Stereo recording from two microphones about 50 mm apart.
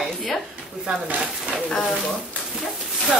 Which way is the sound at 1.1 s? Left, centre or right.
Centre.